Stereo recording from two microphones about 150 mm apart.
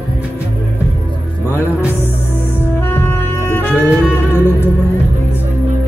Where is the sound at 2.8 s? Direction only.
15° left (ahead or behind).